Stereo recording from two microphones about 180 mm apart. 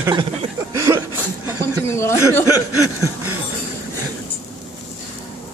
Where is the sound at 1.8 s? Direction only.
15° left (ahead or behind).